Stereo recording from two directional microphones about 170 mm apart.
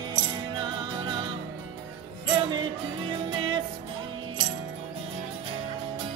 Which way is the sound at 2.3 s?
25° right (ahead or behind).